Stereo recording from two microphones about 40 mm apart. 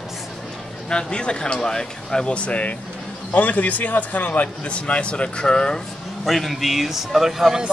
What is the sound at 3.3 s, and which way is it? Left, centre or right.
Speech, left.